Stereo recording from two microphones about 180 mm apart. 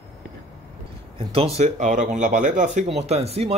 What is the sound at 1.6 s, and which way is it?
Speech, 45° right (ahead or behind).